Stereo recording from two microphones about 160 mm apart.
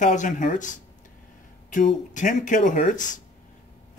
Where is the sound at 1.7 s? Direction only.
50° left (ahead or behind).